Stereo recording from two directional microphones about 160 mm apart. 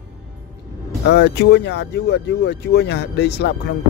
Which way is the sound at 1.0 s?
90° left.